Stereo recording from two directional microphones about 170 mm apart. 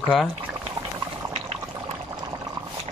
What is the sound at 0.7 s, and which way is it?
Boiling, 20° right (ahead or behind).